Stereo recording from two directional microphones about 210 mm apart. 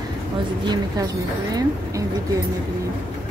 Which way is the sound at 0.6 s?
20° right (ahead or behind).